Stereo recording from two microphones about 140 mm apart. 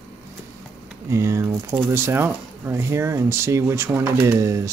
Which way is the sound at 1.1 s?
20° right (ahead or behind).